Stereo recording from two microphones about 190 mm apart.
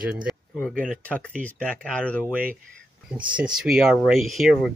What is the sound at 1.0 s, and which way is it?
Speech, 5° left (ahead or behind).